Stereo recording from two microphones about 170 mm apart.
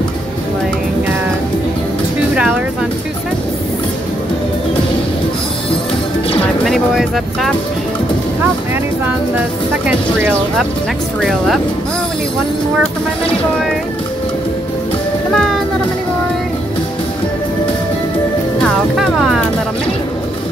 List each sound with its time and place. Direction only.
2.3 s vehicle: 5° right (ahead or behind)
6.6 s speech: centre (ahead or behind)
9.8 s speech: 5° right (ahead or behind)
15.3 s music: centre (ahead or behind)
18.6 s music: centre (ahead or behind)